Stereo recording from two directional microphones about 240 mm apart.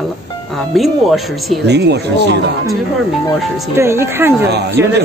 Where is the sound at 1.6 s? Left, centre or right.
Right.